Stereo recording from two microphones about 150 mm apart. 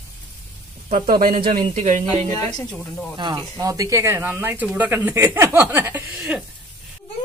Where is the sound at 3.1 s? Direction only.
30° right (ahead or behind); by 6.4 s 10° right (ahead or behind).